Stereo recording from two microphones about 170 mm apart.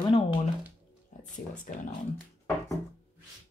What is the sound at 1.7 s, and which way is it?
Speech, 50° left (ahead or behind).